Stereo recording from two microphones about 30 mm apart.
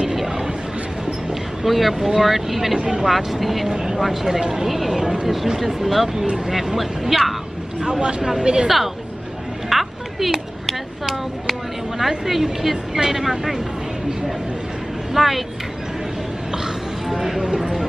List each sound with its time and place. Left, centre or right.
1.6 s speech: centre
3.7 s speech: centre
5.0 s speech: right
5.6 s speech: centre
7.8 s speech: right
8.6 s speech: centre
9.7 s a sound: centre
12.0 s speech: centre
15.1 s speech: centre
17.1 s speech: centre